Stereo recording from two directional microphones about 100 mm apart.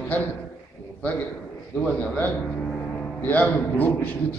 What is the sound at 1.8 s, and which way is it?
A man's voice, 15° left (ahead or behind).